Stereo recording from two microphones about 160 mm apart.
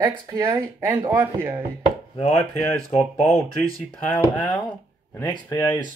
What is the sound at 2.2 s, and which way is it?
Speech, 15° left (ahead or behind).